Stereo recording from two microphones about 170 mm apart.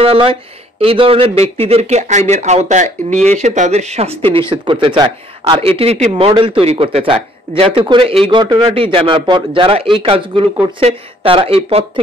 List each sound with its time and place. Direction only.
0.0 s a man's voice: 30° right (ahead or behind)